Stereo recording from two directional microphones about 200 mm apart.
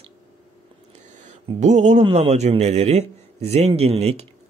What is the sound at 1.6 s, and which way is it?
A man's voice, 35° right (ahead or behind).